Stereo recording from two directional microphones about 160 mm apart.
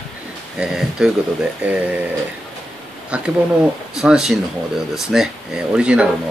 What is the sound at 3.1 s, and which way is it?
Speech, 5° right (ahead or behind).